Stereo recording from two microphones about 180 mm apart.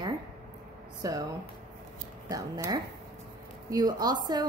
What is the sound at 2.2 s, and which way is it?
A woman's voice, 20° right (ahead or behind).